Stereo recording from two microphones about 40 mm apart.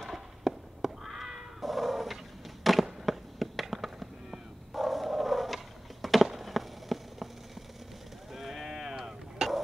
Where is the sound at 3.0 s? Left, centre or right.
Centre.